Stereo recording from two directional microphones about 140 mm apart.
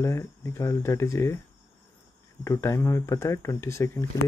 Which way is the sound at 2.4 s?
20° left (ahead or behind).